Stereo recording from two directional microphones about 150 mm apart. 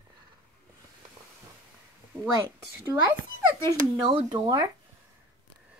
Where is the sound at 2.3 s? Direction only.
20° right (ahead or behind).